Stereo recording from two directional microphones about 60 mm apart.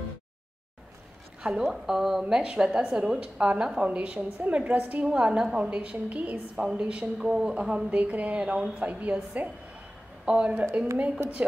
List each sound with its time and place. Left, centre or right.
1.5 s a woman's voice: centre
7.2 s a woman's voice: centre